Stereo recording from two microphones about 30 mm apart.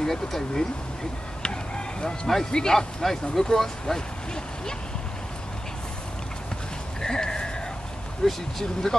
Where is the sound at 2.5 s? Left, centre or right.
Left.